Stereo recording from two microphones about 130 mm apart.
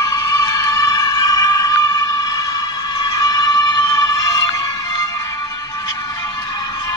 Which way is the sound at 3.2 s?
30° left (ahead or behind).